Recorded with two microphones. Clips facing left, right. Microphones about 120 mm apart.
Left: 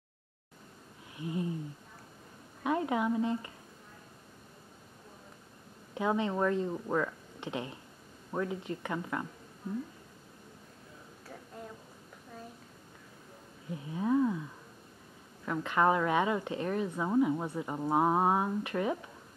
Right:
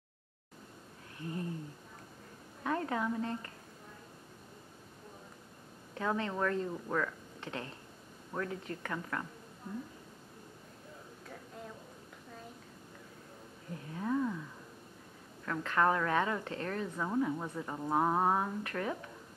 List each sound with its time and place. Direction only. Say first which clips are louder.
1.1 s a sound: left 4 dB; 15° left (ahead or behind)
2.6 s speech: left 4 dB; 15° left (ahead or behind)
5.9 s speech: left 4 dB; 15° left (ahead or behind)
13.8 s speech: left 5 dB; 15° left (ahead or behind)
15.4 s speech: left 2 dB; 15° left (ahead or behind)